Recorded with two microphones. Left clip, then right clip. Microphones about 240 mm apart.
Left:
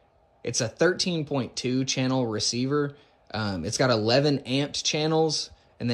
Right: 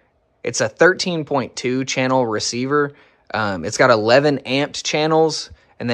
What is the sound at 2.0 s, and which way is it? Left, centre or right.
Speech, right.